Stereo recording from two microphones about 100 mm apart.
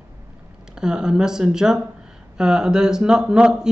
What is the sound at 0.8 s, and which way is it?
Speech, 5° right (ahead or behind).